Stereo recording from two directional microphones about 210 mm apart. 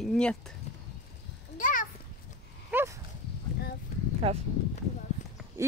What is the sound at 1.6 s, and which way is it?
Children playing, 40° left (ahead or behind).